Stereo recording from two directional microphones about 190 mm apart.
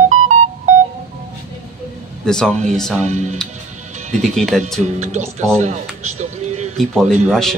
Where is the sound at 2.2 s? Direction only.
5° left (ahead or behind).